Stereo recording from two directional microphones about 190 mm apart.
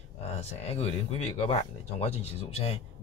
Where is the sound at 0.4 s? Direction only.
35° left (ahead or behind).